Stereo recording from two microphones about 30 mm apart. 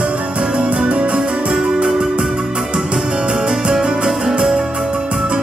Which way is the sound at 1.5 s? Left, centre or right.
Centre.